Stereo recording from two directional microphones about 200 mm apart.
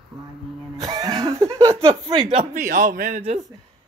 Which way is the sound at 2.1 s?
25° right (ahead or behind).